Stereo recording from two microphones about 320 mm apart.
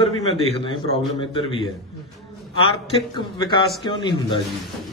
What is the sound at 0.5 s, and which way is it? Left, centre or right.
A man's voice, centre.